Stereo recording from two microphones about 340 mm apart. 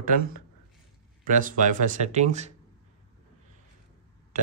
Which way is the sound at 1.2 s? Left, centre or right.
Right.